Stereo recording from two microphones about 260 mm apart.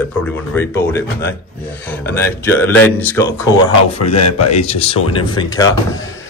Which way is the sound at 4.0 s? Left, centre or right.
Left.